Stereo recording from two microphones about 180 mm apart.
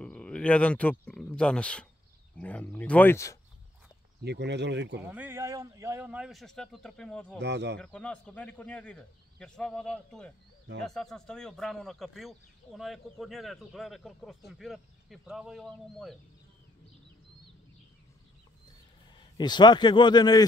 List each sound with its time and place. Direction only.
0.0 s speech: 5° left (ahead or behind)
4.2 s speech: 70° right (ahead or behind)
5.0 s speech: 10° right (ahead or behind); by 7.3 s 5° left (ahead or behind)
7.3 s speech: 70° right (ahead or behind)
7.8 s speech: 5° left (ahead or behind)
19.1 s a man's voice: 25° left (ahead or behind)